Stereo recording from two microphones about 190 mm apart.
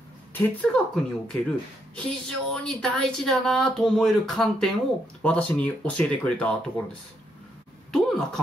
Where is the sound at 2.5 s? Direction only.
Centre (ahead or behind).